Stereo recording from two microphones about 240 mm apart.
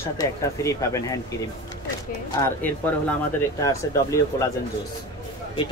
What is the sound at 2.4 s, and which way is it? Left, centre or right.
Speech, centre.